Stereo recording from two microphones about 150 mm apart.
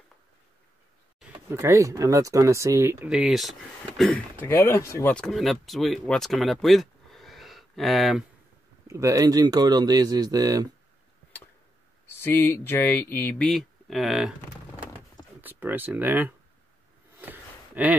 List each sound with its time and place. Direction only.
1.5 s speech: 20° right (ahead or behind)
3.1 s speech: 5° right (ahead or behind)
4.4 s speech: 15° left (ahead or behind)
5.1 s speech: 5° left (ahead or behind)
8.8 s speech: 20° right (ahead or behind)
12.2 s speech: 15° left (ahead or behind); by 14.3 s centre (ahead or behind)
15.4 s speech: 10° right (ahead or behind)
17.2 s a sound: 10° right (ahead or behind)